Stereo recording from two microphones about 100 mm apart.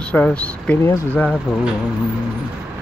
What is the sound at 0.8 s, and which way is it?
Speech, 30° left (ahead or behind).